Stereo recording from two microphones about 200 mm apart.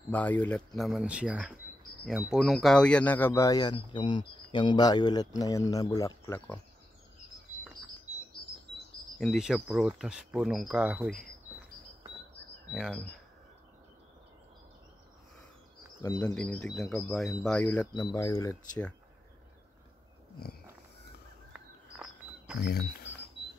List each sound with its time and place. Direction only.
0.1 s speech: 10° left (ahead or behind)
9.2 s speech: centre (ahead or behind)
12.7 s speech: centre (ahead or behind)
16.0 s speech: 15° left (ahead or behind)
16.3 s speech: 5° left (ahead or behind)
22.6 s speech: 50° left (ahead or behind)